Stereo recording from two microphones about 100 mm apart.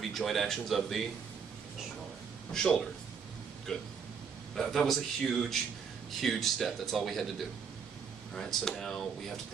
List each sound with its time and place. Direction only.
0.1 s speech: centre (ahead or behind)
2.5 s speech: 5° left (ahead or behind)